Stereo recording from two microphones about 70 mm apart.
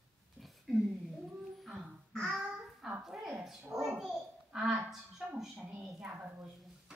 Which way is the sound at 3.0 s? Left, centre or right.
Centre.